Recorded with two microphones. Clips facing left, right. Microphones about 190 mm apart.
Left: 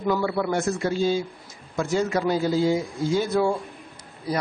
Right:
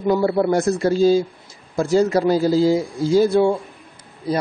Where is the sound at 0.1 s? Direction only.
35° right (ahead or behind).